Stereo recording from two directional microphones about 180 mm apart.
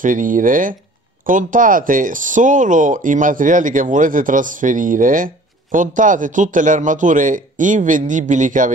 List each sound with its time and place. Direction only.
0.0 s speech: 45° right (ahead or behind)